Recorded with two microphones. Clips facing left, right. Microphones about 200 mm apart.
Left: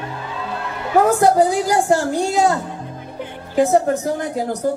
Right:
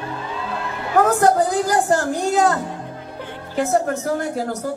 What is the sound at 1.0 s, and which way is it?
A woman's voice, 10° left (ahead or behind).